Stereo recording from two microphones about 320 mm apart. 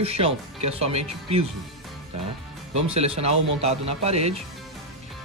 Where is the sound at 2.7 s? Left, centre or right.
Centre.